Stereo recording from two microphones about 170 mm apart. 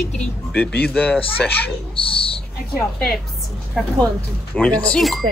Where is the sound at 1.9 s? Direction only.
30° left (ahead or behind).